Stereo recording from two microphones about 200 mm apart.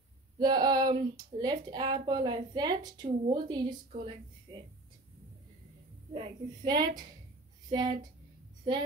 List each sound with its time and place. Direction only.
0.4 s speech: 20° right (ahead or behind)
6.1 s speech: 25° right (ahead or behind)